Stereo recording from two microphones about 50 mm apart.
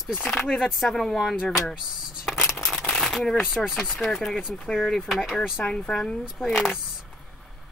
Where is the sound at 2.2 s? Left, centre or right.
Centre.